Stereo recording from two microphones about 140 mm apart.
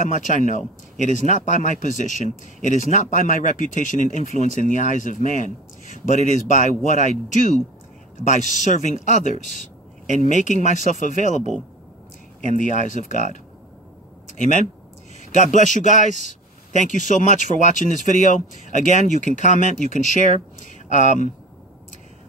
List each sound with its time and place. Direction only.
0.0 s speech: 65° left (ahead or behind)
12.5 s speech: 65° left (ahead or behind)
15.5 s speech: 60° left (ahead or behind)